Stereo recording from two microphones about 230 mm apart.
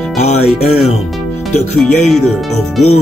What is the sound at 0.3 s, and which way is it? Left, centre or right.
Music, left.